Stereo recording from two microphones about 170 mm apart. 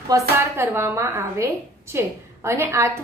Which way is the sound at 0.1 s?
15° right (ahead or behind).